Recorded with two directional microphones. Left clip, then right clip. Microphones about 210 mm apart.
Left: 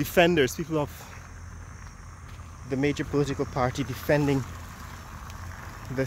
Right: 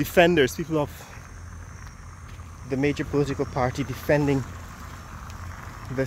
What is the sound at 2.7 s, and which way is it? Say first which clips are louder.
Speech: right 2 dB; 10° left (ahead or behind).